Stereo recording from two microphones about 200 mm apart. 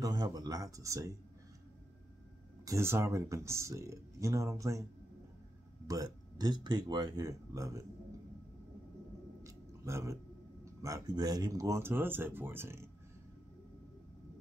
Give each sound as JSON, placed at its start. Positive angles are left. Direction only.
{"t": 0.0, "sound": "speech", "side_deg": -20}
{"t": 2.6, "sound": "speech", "side_deg": -15}
{"t": 5.9, "sound": "speech", "side_deg": -20}
{"t": 9.4, "sound": "a sound", "side_deg": -15}
{"t": 10.6, "sound": "speech", "side_deg": -15}